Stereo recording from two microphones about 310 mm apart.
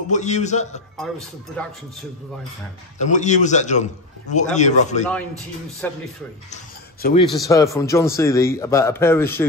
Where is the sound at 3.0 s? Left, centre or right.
Left.